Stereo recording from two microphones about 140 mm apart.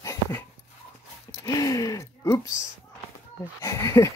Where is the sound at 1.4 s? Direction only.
25° left (ahead or behind).